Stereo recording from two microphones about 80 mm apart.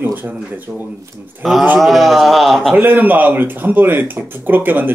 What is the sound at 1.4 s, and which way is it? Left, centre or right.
A man's voice, centre.